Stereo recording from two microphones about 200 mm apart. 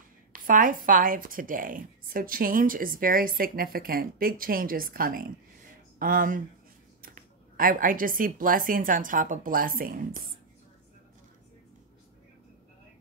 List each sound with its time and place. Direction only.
0.3 s a woman's voice: 45° right (ahead or behind)